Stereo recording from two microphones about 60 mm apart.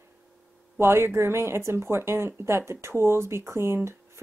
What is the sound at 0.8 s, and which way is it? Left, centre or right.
Speech, right.